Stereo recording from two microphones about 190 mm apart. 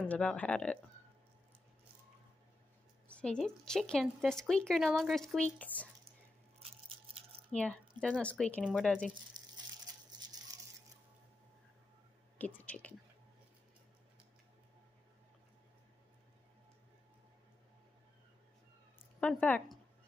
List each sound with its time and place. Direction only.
0.0 s speech: 5° left (ahead or behind)
3.1 s speech: 5° left (ahead or behind)
7.5 s speech: 5° left (ahead or behind)
9.3 s a sound: 45° right (ahead or behind)
12.4 s speech: 10° left (ahead or behind)
19.1 s speech: 10° left (ahead or behind)